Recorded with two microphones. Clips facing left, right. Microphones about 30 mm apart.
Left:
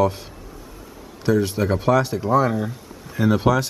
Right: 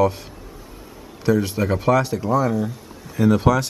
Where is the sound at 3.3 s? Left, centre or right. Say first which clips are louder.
Left 1 dB; centre.